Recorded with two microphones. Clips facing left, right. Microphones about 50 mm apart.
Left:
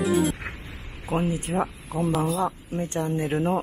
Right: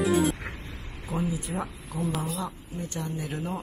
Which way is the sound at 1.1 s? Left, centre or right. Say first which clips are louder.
Left 5 dB; left.